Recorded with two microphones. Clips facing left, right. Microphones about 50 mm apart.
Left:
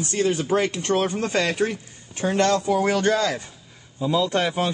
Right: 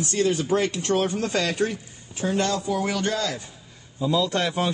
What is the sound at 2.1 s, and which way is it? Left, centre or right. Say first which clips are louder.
Speech: left 3 dB; left.